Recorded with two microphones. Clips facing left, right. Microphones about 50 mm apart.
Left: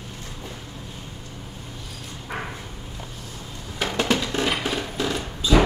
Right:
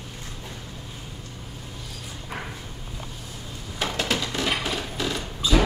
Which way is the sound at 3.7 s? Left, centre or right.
Left.